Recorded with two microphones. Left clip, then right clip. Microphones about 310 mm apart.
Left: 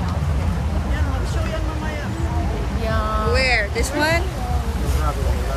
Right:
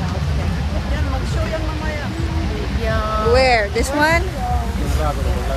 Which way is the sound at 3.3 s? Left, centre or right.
Centre.